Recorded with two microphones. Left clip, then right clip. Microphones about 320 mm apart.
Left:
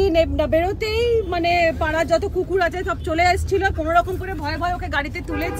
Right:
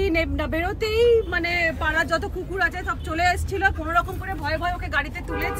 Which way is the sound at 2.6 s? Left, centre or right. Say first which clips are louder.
Left 3 dB; centre.